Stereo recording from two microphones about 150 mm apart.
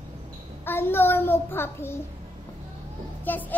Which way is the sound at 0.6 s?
15° left (ahead or behind).